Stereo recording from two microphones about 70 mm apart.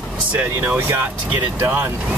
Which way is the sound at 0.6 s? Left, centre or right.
Right.